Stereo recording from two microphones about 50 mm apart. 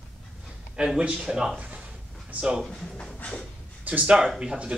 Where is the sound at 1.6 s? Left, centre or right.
Right.